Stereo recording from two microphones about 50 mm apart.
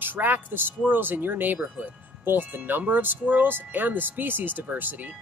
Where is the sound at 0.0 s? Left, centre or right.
Right.